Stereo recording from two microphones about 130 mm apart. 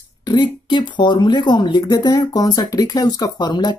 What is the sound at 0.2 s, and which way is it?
Speech, 35° left (ahead or behind).